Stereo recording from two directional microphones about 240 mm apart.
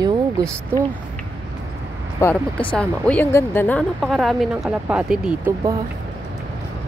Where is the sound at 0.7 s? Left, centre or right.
Centre.